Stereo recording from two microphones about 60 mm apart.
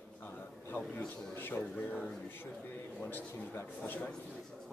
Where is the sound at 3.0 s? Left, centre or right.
Left.